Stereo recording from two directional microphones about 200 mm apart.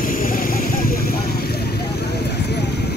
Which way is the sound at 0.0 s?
45° left (ahead or behind).